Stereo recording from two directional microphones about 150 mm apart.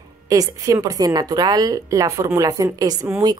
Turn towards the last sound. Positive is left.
turn(degrees=-20)  # may be behind; listen again after turning